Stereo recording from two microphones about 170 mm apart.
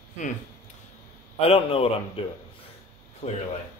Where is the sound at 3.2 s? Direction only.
40° left (ahead or behind).